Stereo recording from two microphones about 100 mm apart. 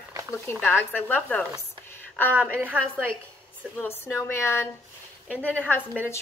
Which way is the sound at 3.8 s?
25° left (ahead or behind).